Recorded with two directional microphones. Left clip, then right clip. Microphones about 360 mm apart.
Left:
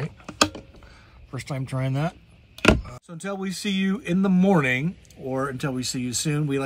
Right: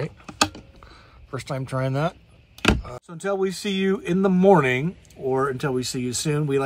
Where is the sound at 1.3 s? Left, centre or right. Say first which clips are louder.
Right 4 dB; right.